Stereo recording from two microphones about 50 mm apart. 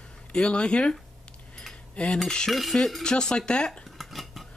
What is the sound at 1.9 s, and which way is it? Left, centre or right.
Cutlery, left.